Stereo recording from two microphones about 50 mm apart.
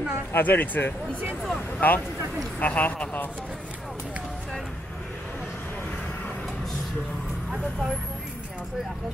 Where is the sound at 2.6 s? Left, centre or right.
Left.